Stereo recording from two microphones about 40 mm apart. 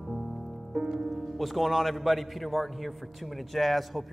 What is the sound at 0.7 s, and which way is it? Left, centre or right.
A man's voice, centre.